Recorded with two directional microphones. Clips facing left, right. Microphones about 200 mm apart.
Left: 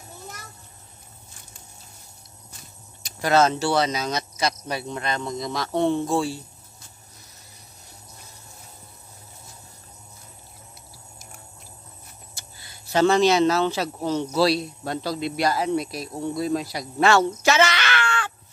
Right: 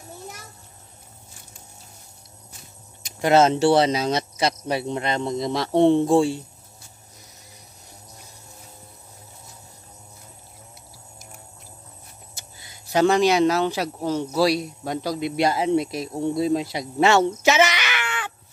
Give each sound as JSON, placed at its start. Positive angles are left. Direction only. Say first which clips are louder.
{"t": 3.1, "sound": "speech", "louder": "right 3 dB", "side_deg": -25}
{"t": 12.4, "sound": "speech", "louder": "right 1 dB", "side_deg": -20}